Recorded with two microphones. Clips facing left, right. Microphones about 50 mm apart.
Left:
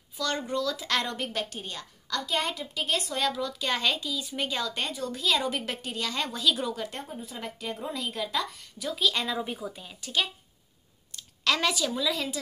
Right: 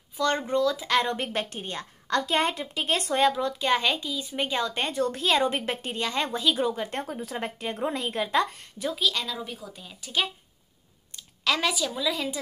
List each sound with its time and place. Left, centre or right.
0.2 s a woman's voice: right
1.1 s a woman's voice: right
4.9 s a woman's voice: right
7.1 s speech: right
7.3 s a woman's voice: right
9.1 s speech: centre
10.0 s speech: centre